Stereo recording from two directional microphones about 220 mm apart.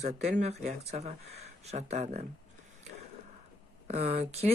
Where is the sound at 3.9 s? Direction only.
30° right (ahead or behind).